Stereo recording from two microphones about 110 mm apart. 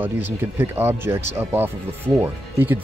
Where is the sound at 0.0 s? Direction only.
20° right (ahead or behind).